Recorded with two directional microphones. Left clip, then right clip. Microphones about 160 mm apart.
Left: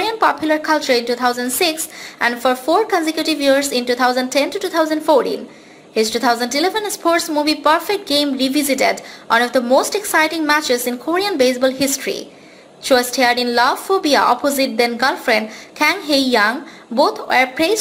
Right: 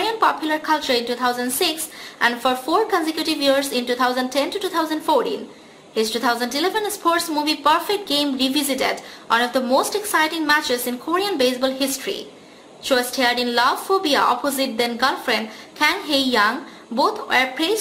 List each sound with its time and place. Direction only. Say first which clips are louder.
0.0 s a woman's voice: left 3 dB; 25° left (ahead or behind)